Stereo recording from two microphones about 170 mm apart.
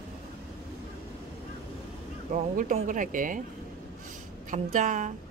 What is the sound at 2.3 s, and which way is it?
A woman's voice, 50° right (ahead or behind).